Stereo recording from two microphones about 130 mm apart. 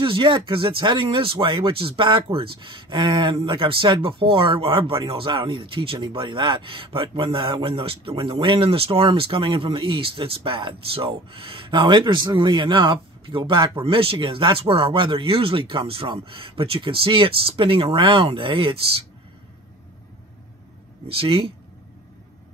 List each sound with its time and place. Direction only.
0.0 s speech: 40° right (ahead or behind)
21.1 s speech: 45° right (ahead or behind)